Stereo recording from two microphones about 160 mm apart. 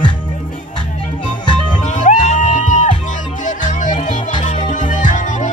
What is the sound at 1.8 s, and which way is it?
Music, 50° left (ahead or behind).